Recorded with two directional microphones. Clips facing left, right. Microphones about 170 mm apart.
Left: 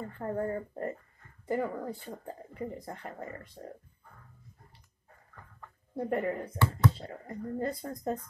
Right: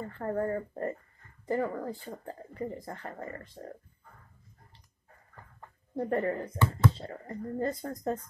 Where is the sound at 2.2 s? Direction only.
15° left (ahead or behind).